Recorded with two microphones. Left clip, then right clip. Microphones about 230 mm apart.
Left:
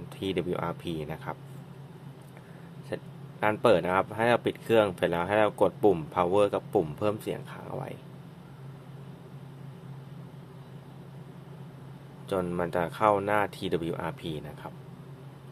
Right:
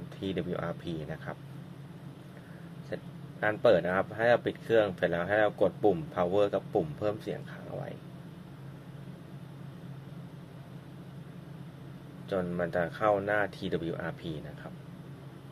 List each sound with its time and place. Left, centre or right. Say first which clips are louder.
0.2 s speech: left 4 dB; left
2.9 s speech: left 3 dB; left
12.3 s speech: left 2 dB; left